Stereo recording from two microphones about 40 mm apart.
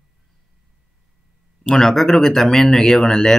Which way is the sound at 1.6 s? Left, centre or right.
Centre.